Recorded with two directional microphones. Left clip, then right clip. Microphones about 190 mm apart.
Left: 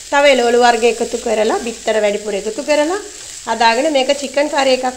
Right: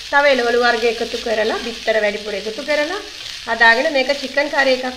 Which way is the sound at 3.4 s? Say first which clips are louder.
Even; 45° left (ahead or behind).